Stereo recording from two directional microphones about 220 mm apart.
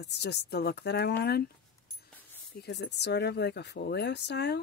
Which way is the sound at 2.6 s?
50° left (ahead or behind).